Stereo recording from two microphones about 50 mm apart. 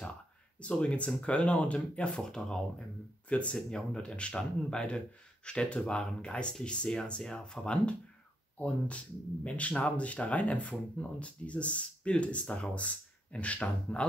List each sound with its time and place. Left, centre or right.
0.6 s speech: left
3.3 s speech: left